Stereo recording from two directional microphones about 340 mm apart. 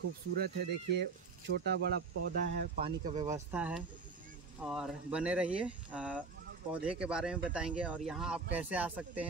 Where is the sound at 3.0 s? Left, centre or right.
Right.